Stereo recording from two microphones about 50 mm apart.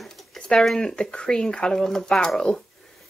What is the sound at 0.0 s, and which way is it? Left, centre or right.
A woman's voice, centre.